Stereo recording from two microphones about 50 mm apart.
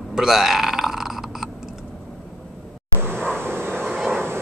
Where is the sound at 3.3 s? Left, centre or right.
Right.